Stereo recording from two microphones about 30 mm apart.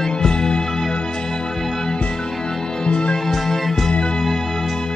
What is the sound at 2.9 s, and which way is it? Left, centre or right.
Music, left.